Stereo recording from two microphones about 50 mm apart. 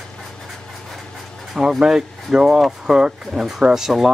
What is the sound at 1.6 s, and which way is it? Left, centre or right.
Speech, centre.